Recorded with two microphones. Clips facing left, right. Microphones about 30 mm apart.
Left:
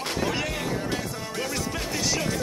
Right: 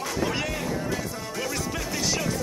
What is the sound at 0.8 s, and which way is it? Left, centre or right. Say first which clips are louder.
Music: even; left.